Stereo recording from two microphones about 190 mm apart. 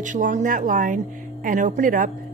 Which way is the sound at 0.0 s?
40° right (ahead or behind).